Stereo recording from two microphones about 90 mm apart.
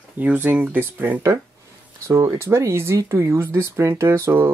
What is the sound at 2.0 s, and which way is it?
Speech, 35° right (ahead or behind).